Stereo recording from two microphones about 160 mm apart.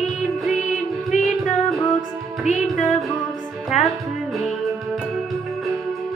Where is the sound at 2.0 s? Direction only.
55° left (ahead or behind).